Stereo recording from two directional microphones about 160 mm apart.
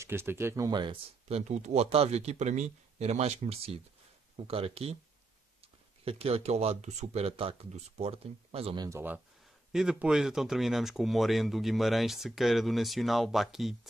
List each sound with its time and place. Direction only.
0.0 s speech: 15° right (ahead or behind)
1.3 s speech: 45° right (ahead or behind)
6.0 s speech: 40° right (ahead or behind)
8.7 s speech: 20° right (ahead or behind)
9.7 s speech: 5° right (ahead or behind)